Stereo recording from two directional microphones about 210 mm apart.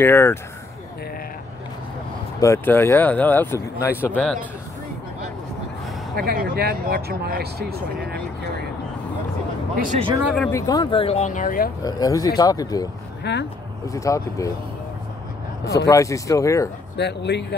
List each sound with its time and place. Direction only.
0.0 s speech: 10° left (ahead or behind)
2.4 s speech: 10° left (ahead or behind)
6.1 s speech: 45° right (ahead or behind)
9.9 s speech: 25° right (ahead or behind)
10.2 s speech: centre (ahead or behind)
10.5 s speech: 20° left (ahead or behind); by 11.7 s 40° left (ahead or behind)
11.8 s speech: 15° left (ahead or behind)
13.2 s speech: 55° left (ahead or behind)
13.8 s speech: 15° left (ahead or behind)
15.9 s speech: 15° left (ahead or behind)
16.9 s speech: 55° left (ahead or behind)